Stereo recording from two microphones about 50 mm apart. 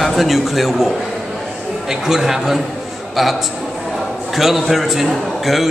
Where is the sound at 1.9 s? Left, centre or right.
Centre.